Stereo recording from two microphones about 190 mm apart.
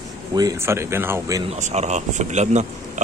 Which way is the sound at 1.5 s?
35° right (ahead or behind).